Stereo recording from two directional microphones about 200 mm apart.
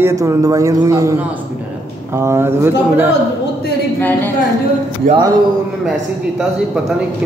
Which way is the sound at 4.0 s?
10° left (ahead or behind).